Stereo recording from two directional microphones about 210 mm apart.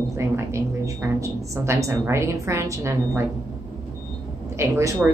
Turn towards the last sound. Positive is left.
turn(degrees=-15)  # may be behind; listen again after turning